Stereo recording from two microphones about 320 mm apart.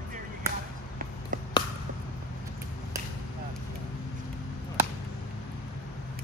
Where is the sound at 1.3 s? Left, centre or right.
Right.